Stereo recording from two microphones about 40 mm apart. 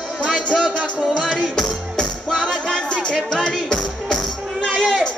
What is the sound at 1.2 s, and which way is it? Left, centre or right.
Music, centre.